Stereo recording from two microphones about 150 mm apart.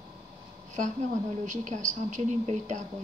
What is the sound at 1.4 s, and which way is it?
Speech, 55° right (ahead or behind).